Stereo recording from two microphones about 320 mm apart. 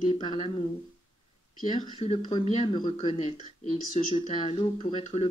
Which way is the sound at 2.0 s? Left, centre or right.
Centre.